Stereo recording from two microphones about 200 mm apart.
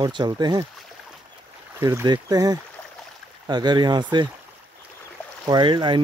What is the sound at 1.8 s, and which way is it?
Speech, 15° right (ahead or behind).